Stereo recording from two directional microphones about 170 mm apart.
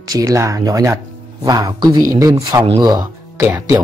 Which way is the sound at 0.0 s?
20° right (ahead or behind).